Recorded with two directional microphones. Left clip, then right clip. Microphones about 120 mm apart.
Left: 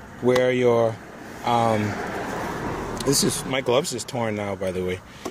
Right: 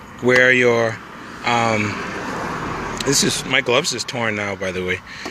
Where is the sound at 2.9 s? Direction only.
30° left (ahead or behind).